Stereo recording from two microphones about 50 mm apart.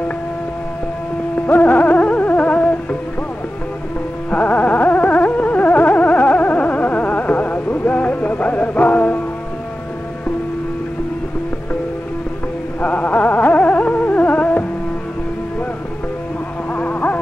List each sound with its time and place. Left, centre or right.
1.5 s music: left
4.3 s carnatic music: left
12.8 s carnatic music: left
16.7 s insect: left